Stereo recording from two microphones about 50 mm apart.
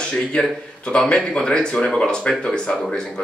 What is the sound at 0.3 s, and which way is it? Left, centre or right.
Speech, centre.